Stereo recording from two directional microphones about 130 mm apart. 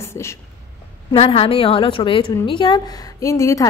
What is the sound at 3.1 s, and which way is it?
Speech, 25° left (ahead or behind).